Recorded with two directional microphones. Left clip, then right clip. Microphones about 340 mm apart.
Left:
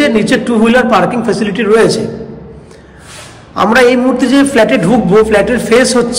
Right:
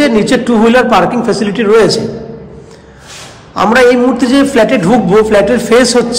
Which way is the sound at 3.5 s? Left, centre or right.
Centre.